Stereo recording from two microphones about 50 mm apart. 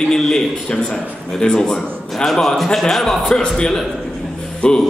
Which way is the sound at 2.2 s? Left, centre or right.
Centre.